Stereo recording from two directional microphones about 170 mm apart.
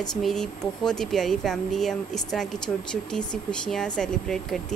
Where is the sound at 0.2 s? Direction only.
5° left (ahead or behind).